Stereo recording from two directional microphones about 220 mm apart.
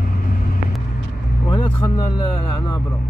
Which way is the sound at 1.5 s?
20° left (ahead or behind).